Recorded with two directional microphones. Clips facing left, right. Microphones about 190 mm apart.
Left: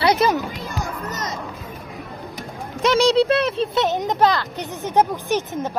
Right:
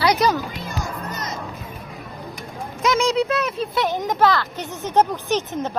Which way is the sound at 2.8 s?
30° left (ahead or behind).